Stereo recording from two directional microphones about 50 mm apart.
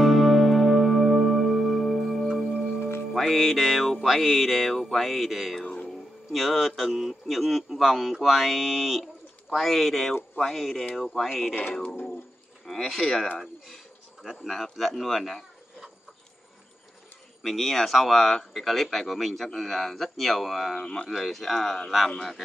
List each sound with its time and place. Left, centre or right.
0.0 s music: centre
5.9 s speech: centre
11.0 s music: centre
12.6 s speech: centre
14.2 s speech: centre
14.5 s music: centre
17.4 s music: centre